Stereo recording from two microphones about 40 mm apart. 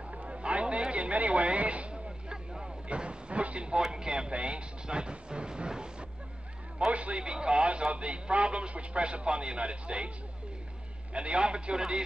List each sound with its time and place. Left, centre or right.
0.1 s a sound: right
2.6 s vehicle: right
3.8 s music: centre
6.9 s a man's voice: right
11.1 s a man's voice: right